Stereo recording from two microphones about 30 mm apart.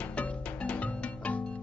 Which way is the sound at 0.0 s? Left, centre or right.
Left.